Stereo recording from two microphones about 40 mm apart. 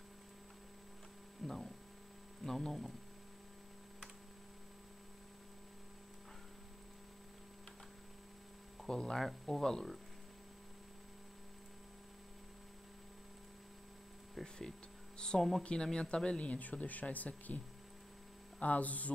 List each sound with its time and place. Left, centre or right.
1.4 s hum: centre
2.4 s speech: centre
8.8 s speech: centre
15.1 s speech: centre; by 17.6 s left
18.6 s speech: left